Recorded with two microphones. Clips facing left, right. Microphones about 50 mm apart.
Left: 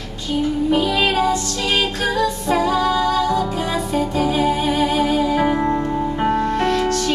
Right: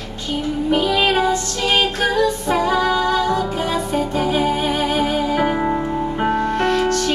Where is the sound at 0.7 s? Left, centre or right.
Centre.